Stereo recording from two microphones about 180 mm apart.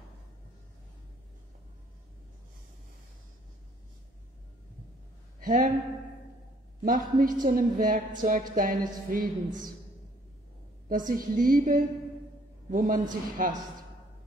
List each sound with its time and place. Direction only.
5.4 s speech: 50° right (ahead or behind)
6.8 s a woman's voice: 50° right (ahead or behind)
10.9 s a woman's voice: 50° right (ahead or behind)